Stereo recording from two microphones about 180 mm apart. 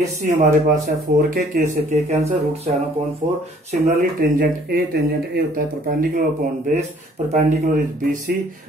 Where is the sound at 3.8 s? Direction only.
45° right (ahead or behind).